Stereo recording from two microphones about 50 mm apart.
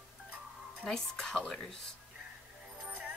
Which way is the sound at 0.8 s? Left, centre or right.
Centre.